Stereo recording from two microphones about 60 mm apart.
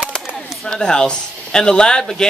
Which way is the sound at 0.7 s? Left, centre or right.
Centre.